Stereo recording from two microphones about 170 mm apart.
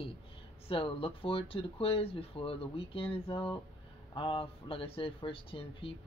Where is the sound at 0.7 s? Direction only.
30° left (ahead or behind).